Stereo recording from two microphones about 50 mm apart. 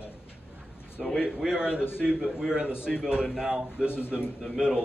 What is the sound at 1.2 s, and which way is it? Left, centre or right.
A man's voice, centre.